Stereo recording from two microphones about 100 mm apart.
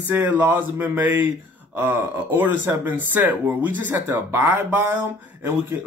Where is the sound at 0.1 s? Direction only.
20° right (ahead or behind).